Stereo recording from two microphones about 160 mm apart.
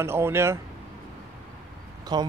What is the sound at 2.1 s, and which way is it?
Speech, 25° right (ahead or behind).